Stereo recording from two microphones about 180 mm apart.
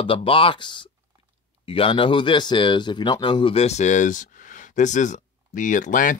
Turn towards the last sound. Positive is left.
turn(degrees=45)  # may be behind; listen again after turning